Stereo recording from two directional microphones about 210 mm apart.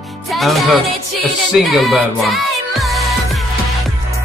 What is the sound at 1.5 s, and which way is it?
Music, centre (ahead or behind).